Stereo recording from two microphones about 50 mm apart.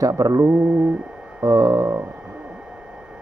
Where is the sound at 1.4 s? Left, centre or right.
Right.